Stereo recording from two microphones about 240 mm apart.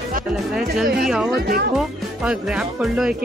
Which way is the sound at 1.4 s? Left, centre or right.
Right.